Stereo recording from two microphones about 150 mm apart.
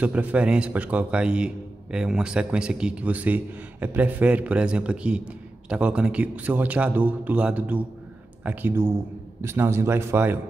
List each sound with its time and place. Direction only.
0.0 s a man's voice: 10° right (ahead or behind)